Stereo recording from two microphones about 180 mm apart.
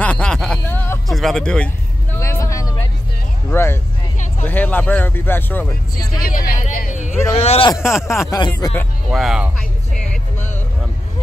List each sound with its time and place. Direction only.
0.0 s a sound: 5° left (ahead or behind)
1.0 s speech: centre (ahead or behind)
2.1 s vehicle: 15° left (ahead or behind)
3.4 s speech: 15° left (ahead or behind)
6.2 s speech: 55° left (ahead or behind)
6.6 s a sound: 45° left (ahead or behind)
7.4 s speech: 35° left (ahead or behind)
7.9 s speech: centre (ahead or behind)
8.3 s speech: 25° left (ahead or behind)
9.1 s a sound: centre (ahead or behind)